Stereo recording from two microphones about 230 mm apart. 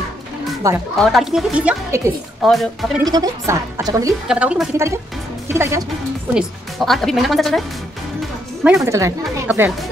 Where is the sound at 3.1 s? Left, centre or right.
Centre.